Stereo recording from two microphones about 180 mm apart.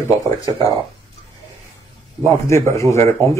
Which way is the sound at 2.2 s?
15° left (ahead or behind).